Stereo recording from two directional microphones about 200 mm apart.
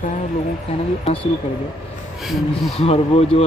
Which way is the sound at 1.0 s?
25° left (ahead or behind).